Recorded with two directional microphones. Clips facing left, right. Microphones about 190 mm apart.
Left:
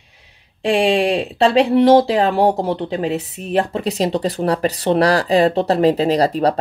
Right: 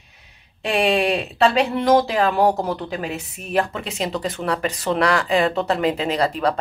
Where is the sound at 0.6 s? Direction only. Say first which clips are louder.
Left 4 dB; 30° left (ahead or behind).